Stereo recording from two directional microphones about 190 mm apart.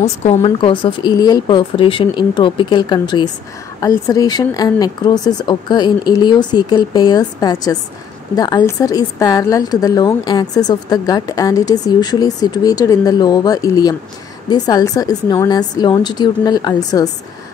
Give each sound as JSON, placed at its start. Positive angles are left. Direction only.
{"t": 0.0, "sound": "a woman's voice", "side_deg": 35}